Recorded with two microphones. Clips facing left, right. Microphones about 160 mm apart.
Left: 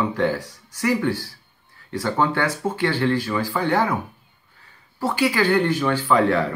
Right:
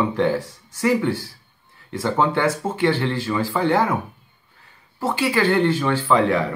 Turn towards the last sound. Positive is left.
turn(degrees=-25)  # may be behind; listen again after turning